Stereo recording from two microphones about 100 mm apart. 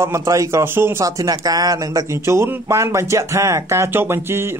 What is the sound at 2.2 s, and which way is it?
Speech, 30° right (ahead or behind).